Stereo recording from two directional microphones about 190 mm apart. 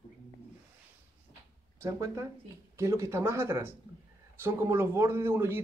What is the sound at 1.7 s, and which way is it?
A man's voice, 15° right (ahead or behind).